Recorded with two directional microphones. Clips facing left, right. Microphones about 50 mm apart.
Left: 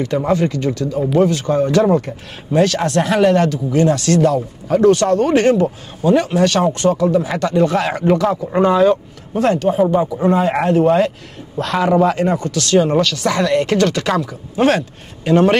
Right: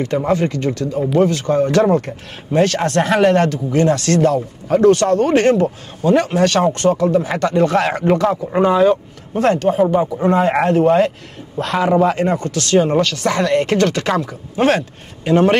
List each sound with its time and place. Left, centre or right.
0.3 s speech: right
8.5 s speech: centre
9.4 s a man's voice: right
11.6 s a man's voice: right
12.1 s a man's voice: right